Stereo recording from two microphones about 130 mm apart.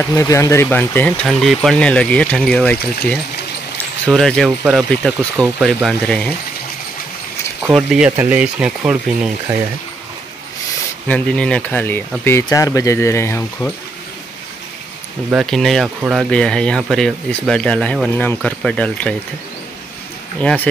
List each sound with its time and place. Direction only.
0.1 s speech: 25° left (ahead or behind)
1.2 s speech: centre (ahead or behind)
7.7 s speech: centre (ahead or behind)
11.1 s speech: 10° left (ahead or behind)
12.4 s speech: 25° left (ahead or behind)
15.3 s speech: centre (ahead or behind)
18.1 s speech: 15° left (ahead or behind)
20.3 s speech: 10° left (ahead or behind)